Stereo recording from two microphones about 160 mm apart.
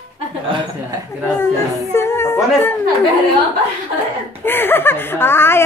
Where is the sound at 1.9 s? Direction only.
15° left (ahead or behind).